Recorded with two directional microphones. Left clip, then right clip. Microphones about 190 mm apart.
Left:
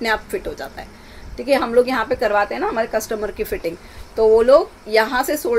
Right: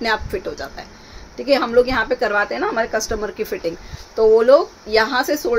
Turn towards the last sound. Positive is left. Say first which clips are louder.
# even
turn(degrees=-10)  # may be behind; listen again after turning